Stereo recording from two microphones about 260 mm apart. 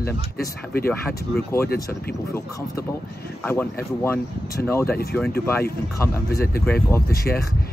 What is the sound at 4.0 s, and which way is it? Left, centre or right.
Speech, centre.